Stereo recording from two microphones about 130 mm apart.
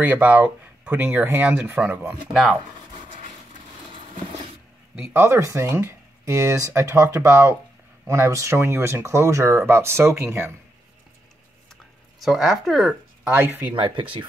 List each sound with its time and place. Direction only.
0.0 s speech: 15° right (ahead or behind)
2.9 s a sound: 45° right (ahead or behind)
4.9 s speech: 15° right (ahead or behind)
12.2 s speech: centre (ahead or behind)
13.3 s speech: 15° right (ahead or behind)
13.7 s speech: 40° right (ahead or behind)